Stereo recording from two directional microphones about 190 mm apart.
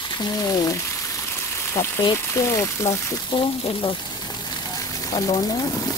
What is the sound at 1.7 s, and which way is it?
Speech, 15° left (ahead or behind).